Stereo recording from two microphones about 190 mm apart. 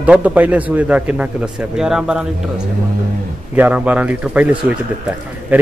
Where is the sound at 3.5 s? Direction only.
10° right (ahead or behind).